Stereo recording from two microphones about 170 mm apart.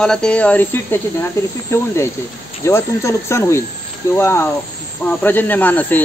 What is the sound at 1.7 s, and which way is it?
Speech, 15° left (ahead or behind).